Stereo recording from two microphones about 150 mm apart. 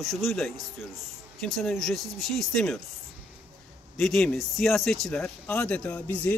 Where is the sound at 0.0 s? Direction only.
Centre (ahead or behind).